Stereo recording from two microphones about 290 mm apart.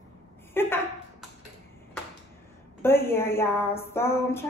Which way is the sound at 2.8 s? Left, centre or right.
Centre.